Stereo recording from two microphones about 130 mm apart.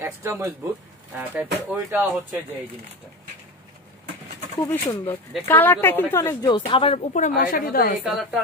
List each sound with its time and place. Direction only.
0.0 s speech: 20° right (ahead or behind)
4.6 s a woman's voice: 20° left (ahead or behind)
6.4 s speech: 40° left (ahead or behind)
7.2 s a woman's voice: 80° left
8.0 s speech: 5° right (ahead or behind)